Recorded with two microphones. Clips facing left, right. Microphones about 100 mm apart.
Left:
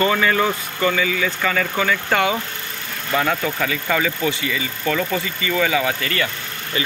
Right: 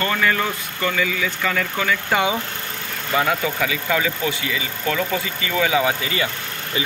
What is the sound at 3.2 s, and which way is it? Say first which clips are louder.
Speech: even; 10° right (ahead or behind).